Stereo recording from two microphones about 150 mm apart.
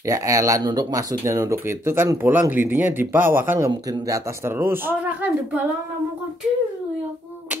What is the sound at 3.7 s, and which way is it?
Speech, 25° right (ahead or behind).